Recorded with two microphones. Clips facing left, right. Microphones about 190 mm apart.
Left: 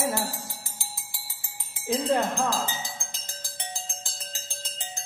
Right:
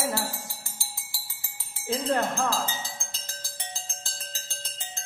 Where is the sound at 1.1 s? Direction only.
20° left (ahead or behind).